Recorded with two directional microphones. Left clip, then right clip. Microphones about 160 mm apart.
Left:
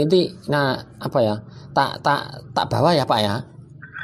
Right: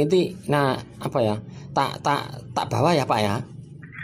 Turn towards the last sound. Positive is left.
turn(degrees=20)  # may be behind; listen again after turning